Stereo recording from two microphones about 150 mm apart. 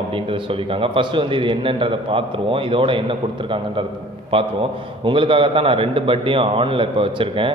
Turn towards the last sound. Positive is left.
turn(degrees=-35)  # may be behind; listen again after turning